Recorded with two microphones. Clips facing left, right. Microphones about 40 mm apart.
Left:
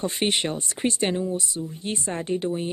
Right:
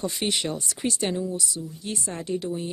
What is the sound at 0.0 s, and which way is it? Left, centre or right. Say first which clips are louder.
Speech: left 3 dB; left.